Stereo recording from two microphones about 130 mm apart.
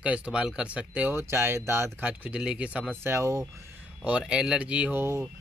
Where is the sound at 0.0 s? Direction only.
10° right (ahead or behind).